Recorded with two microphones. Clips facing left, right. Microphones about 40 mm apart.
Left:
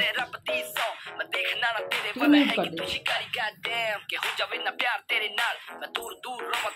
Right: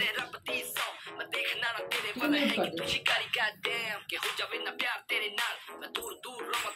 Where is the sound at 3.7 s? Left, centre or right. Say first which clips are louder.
Left 6 dB; left.